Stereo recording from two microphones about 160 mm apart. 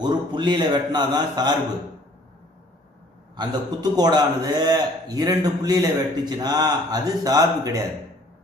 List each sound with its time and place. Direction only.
0.0 s a man's voice: 25° right (ahead or behind)
3.3 s a man's voice: 25° right (ahead or behind)